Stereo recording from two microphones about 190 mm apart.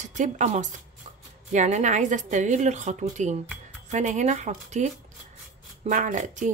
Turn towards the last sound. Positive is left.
turn(degrees=-40)  # may be behind; listen again after turning